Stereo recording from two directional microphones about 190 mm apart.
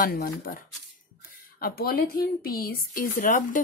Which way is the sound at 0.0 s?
50° left (ahead or behind).